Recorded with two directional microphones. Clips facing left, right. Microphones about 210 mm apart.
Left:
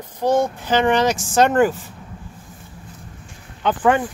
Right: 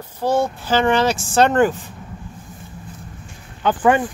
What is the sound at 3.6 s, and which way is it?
Speech, 5° right (ahead or behind).